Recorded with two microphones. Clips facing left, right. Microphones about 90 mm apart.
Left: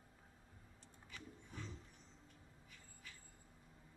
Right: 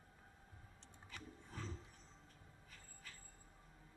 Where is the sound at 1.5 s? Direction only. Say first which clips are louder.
Right 2 dB; 40° right (ahead or behind).